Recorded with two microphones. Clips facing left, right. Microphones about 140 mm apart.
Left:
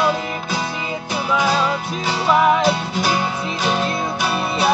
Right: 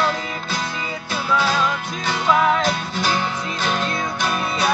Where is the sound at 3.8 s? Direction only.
30° left (ahead or behind).